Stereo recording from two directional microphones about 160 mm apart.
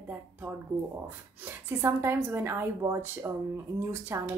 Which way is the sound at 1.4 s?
15° right (ahead or behind).